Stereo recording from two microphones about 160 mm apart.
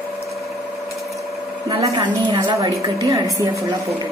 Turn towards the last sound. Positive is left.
turn(degrees=-20)  # may be behind; listen again after turning